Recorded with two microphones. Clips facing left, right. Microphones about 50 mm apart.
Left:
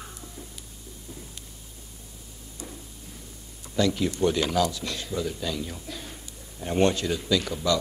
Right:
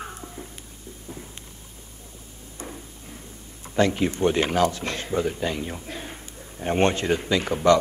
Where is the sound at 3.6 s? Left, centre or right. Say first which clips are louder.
Right 3 dB; right.